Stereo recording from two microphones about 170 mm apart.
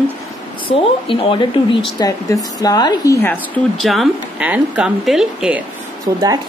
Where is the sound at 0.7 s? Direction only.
30° left (ahead or behind).